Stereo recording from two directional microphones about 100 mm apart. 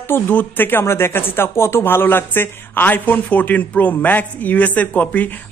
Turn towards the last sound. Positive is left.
turn(degrees=15)  # may be behind; listen again after turning